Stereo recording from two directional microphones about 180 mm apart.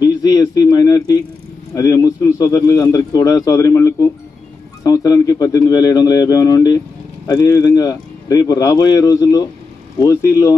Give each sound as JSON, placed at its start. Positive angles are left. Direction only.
{"t": 0.0, "sound": "a man's voice", "side_deg": 20}